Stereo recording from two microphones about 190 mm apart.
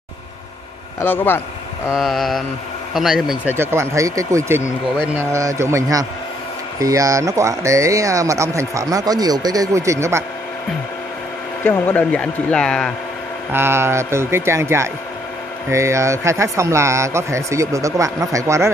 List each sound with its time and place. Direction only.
1.0 s speech: 10° left (ahead or behind)
2.0 s speech: centre (ahead or behind)
3.5 s speech: 15° right (ahead or behind)
11.6 s speech: 10° left (ahead or behind)
13.5 s speech: 10° right (ahead or behind)